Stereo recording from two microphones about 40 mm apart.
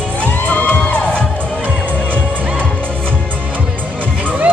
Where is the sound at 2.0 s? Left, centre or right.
Right.